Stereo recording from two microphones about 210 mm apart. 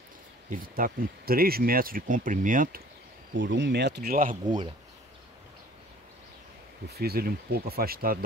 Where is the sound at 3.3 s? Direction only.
60° right (ahead or behind); by 4.4 s 40° right (ahead or behind).